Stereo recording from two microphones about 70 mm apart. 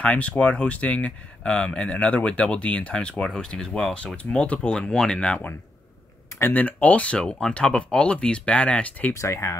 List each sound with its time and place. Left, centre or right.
0.0 s speech: centre
6.5 s speech: left
9.1 s speech: left